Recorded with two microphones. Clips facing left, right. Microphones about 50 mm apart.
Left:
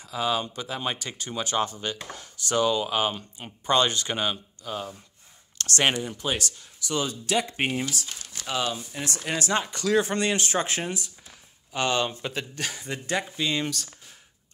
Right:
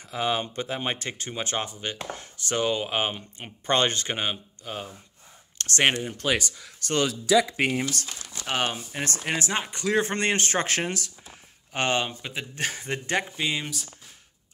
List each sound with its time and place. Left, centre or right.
0.0 s speech: right
1.7 s speech: right
2.0 s speech: right
3.6 s speech: right
6.2 s speech: right
7.1 s speech: right
7.9 s speech: right
9.3 s speech: right
11.7 s speech: right
12.1 s speech: centre
12.5 s speech: right
13.6 s speech: centre